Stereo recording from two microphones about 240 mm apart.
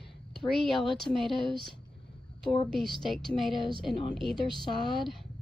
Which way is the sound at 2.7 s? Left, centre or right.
Centre.